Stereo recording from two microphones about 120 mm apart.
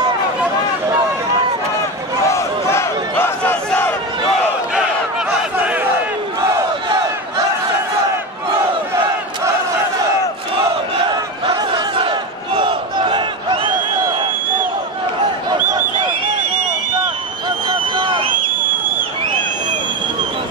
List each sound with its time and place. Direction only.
2.2 s battle cry: 25° left (ahead or behind)
11.5 s battle cry: 45° right (ahead or behind)
17.6 s a sound: 40° right (ahead or behind)